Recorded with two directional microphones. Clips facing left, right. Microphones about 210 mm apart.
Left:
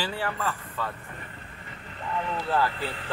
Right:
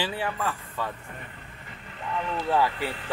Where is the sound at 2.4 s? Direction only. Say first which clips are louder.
Right 3 dB; 15° right (ahead or behind).